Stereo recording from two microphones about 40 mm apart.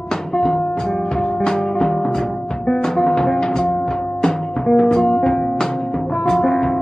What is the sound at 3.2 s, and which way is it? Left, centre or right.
Music, centre.